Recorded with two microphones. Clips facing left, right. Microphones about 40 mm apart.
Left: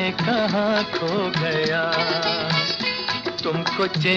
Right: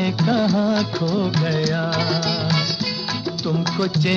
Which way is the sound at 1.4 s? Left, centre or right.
Centre.